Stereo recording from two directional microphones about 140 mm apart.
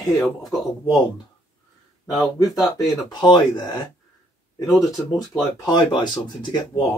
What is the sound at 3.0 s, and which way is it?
Speech, 30° left (ahead or behind).